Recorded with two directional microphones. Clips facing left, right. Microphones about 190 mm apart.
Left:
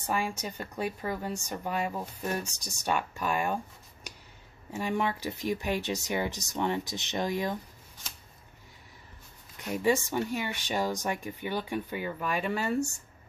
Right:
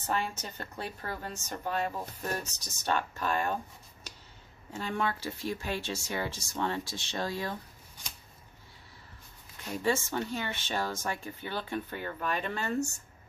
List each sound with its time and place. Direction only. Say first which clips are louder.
0.0 s speech: left 2 dB; 10° left (ahead or behind)
4.1 s a sound: left 3 dB; 15° left (ahead or behind)
4.7 s speech: left 3 dB; 15° left (ahead or behind)
9.8 s speech: left 3 dB; 15° left (ahead or behind)